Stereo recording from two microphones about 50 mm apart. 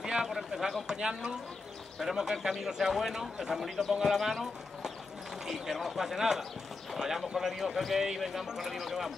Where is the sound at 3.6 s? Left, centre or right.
Centre.